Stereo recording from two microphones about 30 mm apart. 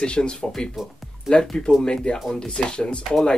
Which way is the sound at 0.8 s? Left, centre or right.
Centre.